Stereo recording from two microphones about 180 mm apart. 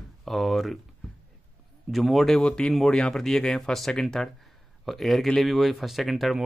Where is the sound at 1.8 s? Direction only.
Centre (ahead or behind).